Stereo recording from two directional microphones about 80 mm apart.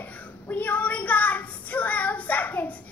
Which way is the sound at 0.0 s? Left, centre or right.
Left.